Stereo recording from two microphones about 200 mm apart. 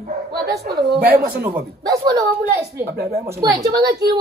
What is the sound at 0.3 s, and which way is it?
Speech, 55° right (ahead or behind).